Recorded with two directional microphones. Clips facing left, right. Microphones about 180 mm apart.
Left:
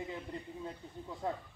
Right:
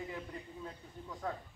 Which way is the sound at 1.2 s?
25° left (ahead or behind).